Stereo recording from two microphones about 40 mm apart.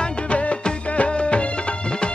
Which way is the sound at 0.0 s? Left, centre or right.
Left.